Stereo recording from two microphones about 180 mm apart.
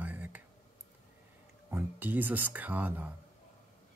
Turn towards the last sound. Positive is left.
turn(degrees=-10)  # may be behind; listen again after turning